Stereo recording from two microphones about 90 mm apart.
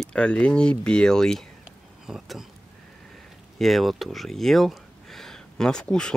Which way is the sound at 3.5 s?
Centre (ahead or behind).